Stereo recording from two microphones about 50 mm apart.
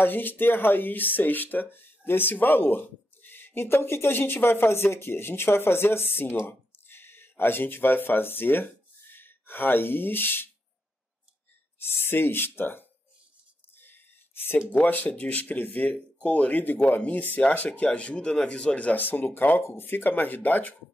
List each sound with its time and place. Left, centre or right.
0.0 s speech: left
11.9 s speech: left
13.7 s a sound: left
14.7 s speech: left
17.4 s speech: left
18.9 s speech: left
19.6 s speech: left